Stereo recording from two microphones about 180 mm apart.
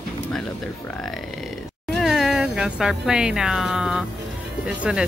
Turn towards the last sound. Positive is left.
turn(degrees=-5)  # may be behind; listen again after turning